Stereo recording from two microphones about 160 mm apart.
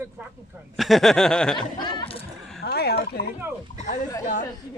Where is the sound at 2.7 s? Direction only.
85° left.